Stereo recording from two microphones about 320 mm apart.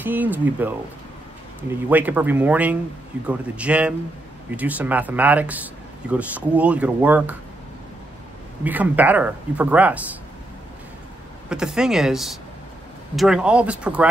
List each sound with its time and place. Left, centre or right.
0.0 s speech: centre
8.6 s speech: centre
11.4 s speech: centre